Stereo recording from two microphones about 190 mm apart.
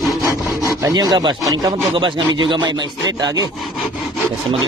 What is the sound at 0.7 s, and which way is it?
Speech, 20° right (ahead or behind).